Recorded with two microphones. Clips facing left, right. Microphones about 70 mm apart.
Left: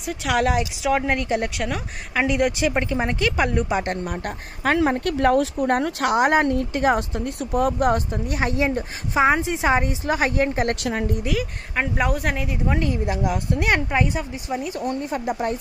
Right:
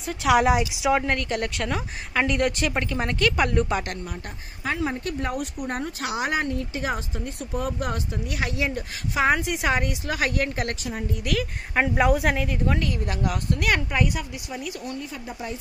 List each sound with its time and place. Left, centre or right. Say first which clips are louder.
0.0 s speech: right 2 dB; centre
1.0 s speech: left 3 dB; centre
1.6 s speech: left 1 dB; centre
4.6 s speech: left 7 dB; left
5.0 s speech: left 10 dB; left
6.1 s speech: left 8 dB; left
7.9 s speech: left 7 dB; left
10.8 s a woman's voice: left 7 dB; left
11.7 s speech: right 2 dB; centre
12.6 s speech: left 7 dB; left